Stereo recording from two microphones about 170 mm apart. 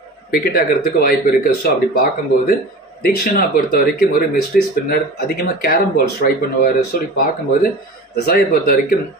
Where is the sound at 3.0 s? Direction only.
60° left (ahead or behind).